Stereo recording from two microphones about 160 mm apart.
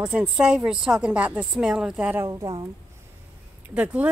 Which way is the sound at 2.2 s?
20° right (ahead or behind).